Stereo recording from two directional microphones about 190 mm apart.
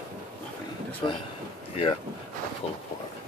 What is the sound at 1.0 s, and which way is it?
Speech, 25° left (ahead or behind).